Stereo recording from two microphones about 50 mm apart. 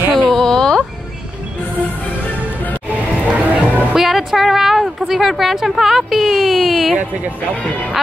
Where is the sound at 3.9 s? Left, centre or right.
Centre.